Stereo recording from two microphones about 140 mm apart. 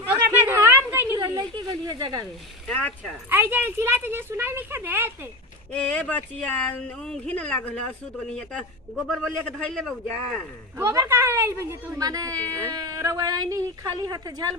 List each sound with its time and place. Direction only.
0.3 s a sound: 15° right (ahead or behind)
1.4 s a sound: 30° right (ahead or behind)
2.7 s speech: 10° left (ahead or behind)
3.3 s speech: 15° right (ahead or behind)
5.7 s speech: 10° left (ahead or behind)
10.8 s a woman's voice: 20° right (ahead or behind)